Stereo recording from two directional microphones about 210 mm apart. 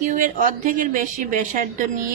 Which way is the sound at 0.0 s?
40° right (ahead or behind).